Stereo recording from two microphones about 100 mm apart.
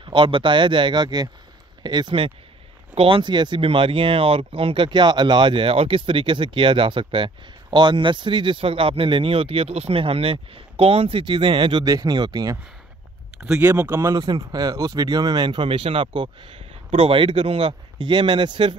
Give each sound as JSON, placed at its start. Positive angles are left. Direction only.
{"t": 0.0, "sound": "speech", "side_deg": -55}
{"t": 11.8, "sound": "speech", "side_deg": -35}
{"t": 13.6, "sound": "speech", "side_deg": -20}
{"t": 14.0, "sound": "speech", "side_deg": -40}